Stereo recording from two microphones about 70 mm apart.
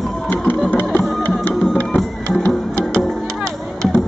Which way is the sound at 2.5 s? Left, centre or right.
Centre.